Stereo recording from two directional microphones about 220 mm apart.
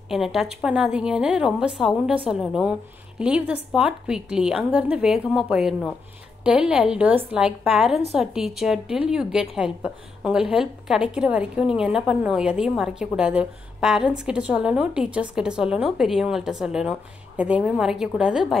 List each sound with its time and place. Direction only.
0.1 s a woman's voice: centre (ahead or behind)